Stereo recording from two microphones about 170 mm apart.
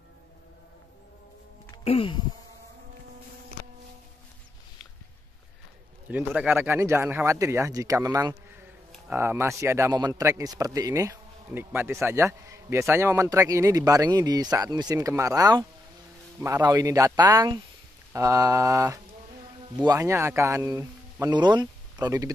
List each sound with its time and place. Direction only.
1.9 s insect: 35° left (ahead or behind)
6.0 s a man's voice: 10° right (ahead or behind)